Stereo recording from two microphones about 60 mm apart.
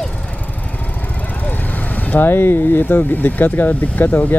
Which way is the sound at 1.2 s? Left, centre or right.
Left.